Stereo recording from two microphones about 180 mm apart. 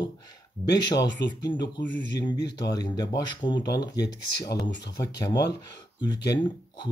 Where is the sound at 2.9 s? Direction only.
20° left (ahead or behind).